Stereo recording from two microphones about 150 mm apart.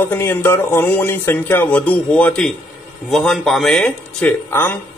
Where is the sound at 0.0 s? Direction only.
15° left (ahead or behind).